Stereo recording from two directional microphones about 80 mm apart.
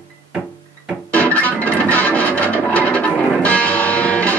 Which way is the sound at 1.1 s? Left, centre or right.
Left.